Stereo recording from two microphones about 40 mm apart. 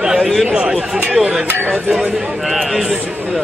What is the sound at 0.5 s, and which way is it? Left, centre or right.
Speech, right.